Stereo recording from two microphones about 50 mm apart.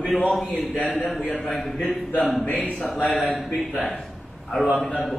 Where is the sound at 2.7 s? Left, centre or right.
Left.